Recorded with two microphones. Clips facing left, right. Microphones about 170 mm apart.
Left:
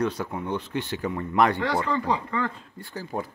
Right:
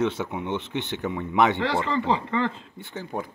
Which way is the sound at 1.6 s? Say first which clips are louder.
Right 1 dB; 25° right (ahead or behind).